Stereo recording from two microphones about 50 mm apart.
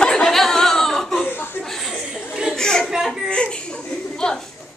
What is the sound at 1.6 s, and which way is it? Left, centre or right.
Chuckle, centre.